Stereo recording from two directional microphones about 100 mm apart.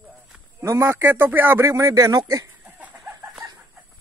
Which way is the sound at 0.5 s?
25° right (ahead or behind).